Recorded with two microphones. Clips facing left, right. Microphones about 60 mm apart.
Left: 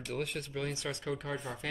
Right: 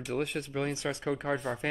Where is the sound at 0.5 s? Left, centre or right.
Right.